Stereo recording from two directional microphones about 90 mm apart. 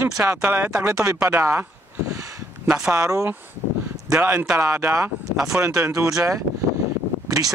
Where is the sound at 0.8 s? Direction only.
30° right (ahead or behind).